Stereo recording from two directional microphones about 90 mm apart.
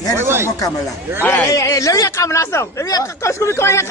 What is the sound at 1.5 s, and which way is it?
Speech, 35° left (ahead or behind).